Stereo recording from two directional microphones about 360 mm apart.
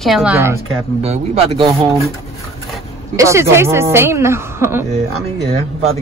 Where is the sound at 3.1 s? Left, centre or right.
Centre.